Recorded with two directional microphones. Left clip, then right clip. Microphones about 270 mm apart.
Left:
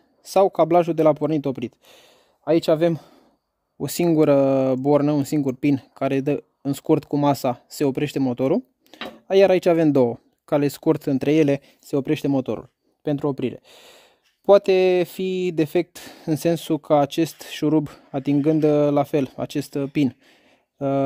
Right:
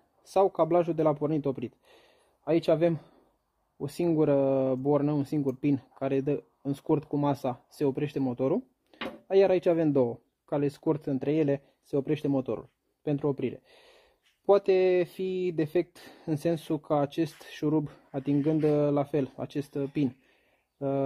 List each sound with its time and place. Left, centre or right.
0.2 s speech: left
8.9 s a sound: left
9.3 s speech: left